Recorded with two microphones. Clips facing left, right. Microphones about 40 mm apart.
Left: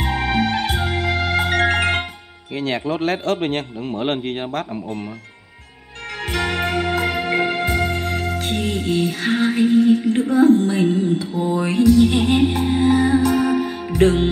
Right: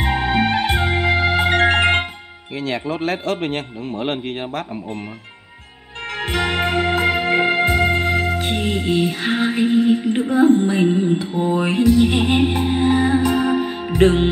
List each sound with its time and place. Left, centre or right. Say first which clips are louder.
0.0 s music: right 2 dB; right
2.5 s a man's voice: left 1 dB; centre
6.1 s music: right 2 dB; right